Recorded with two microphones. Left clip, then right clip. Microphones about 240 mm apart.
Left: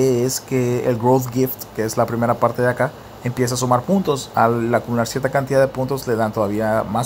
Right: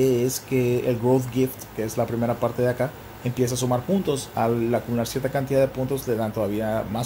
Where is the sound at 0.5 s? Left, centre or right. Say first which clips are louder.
Left 3 dB; left.